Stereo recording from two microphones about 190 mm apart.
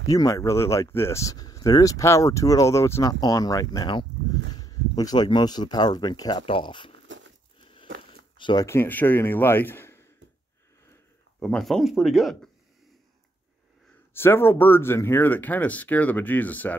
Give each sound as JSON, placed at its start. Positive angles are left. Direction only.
{"t": 0.1, "sound": "speech", "side_deg": 15}
{"t": 7.1, "sound": "a sound", "side_deg": -80}
{"t": 8.4, "sound": "speech", "side_deg": 20}
{"t": 11.3, "sound": "speech", "side_deg": 5}
{"t": 14.1, "sound": "speech", "side_deg": 10}